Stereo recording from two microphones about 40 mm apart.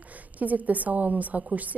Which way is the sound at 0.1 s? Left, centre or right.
Right.